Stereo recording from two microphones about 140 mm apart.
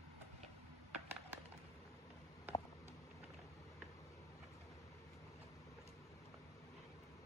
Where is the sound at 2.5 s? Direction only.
15° right (ahead or behind).